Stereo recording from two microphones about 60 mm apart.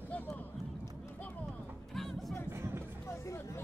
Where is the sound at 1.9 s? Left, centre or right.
Centre.